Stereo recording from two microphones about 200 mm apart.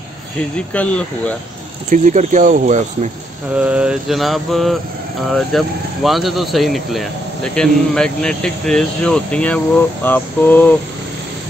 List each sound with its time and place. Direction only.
0.4 s speech: 5° left (ahead or behind)
1.9 s speech: 40° right (ahead or behind)
3.5 s speech: 5° right (ahead or behind)
10.0 s mantra: 10° left (ahead or behind)